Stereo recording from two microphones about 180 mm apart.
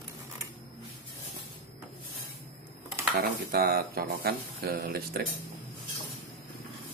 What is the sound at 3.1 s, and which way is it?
Speech, 60° right (ahead or behind).